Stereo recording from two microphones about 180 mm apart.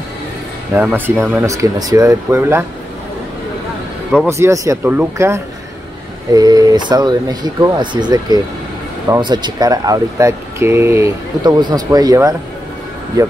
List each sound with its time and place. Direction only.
0.7 s speech: 10° right (ahead or behind)
4.3 s speech: 15° right (ahead or behind)